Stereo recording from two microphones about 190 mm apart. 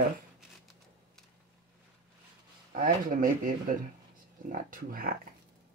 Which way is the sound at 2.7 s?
45° right (ahead or behind).